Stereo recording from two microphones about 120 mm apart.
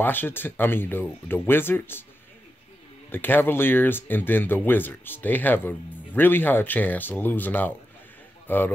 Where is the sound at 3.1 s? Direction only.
15° left (ahead or behind).